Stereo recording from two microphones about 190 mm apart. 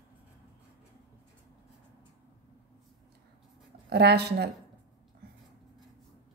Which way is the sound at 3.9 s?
60° right (ahead or behind).